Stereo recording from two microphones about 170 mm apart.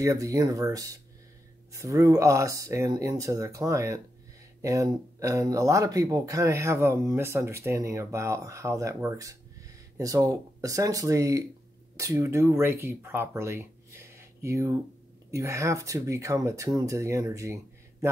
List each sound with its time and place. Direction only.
0.0 s speech: 20° right (ahead or behind)